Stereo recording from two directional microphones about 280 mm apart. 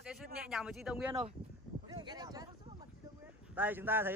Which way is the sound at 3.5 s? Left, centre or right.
Centre.